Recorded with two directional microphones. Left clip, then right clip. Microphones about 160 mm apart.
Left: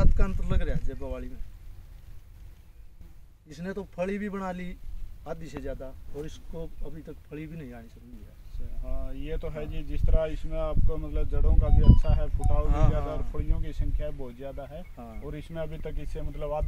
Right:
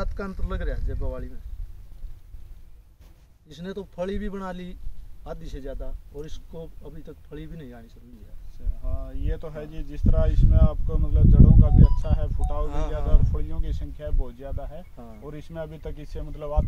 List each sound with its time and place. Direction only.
0.1 s speech: 5° right (ahead or behind)
0.5 s speech: 10° left (ahead or behind)
3.9 s a man's voice: 20° right (ahead or behind)
5.2 s a man's voice: centre (ahead or behind)
8.8 s a man's voice: 15° left (ahead or behind)
15.0 s speech: 10° right (ahead or behind)
15.2 s speech: 10° left (ahead or behind)